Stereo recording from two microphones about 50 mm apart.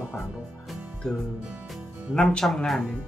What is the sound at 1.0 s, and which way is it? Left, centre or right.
Speech, centre.